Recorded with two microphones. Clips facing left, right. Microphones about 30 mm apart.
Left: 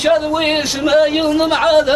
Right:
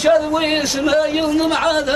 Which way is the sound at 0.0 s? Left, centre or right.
Left.